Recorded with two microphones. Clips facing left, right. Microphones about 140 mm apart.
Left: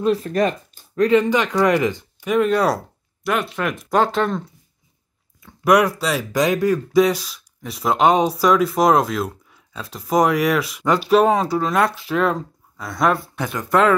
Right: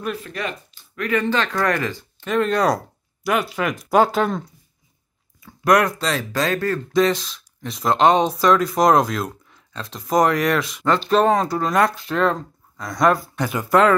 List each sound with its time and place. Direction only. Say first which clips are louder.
0.0 s speech: left 9 dB; 35° left (ahead or behind)
1.2 s speech: left 3 dB; 15° left (ahead or behind); by 4.4 s 5° right (ahead or behind)
5.4 s speech: left 1 dB; 5° left (ahead or behind)